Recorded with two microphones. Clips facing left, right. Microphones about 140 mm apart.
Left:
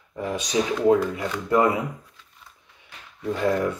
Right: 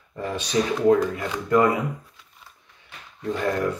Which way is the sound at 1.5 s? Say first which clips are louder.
Right 1 dB; 25° left (ahead or behind).